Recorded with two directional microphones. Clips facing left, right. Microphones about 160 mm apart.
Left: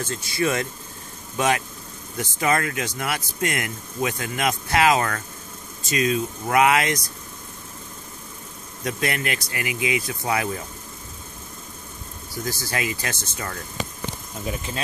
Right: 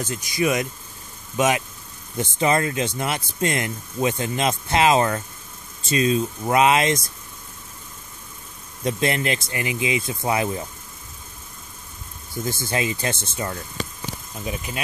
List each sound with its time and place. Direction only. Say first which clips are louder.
0.0 s speech: right 1 dB; 15° right (ahead or behind)
8.8 s speech: right 4 dB; 25° right (ahead or behind)
12.4 s speech: right 3 dB; 25° right (ahead or behind)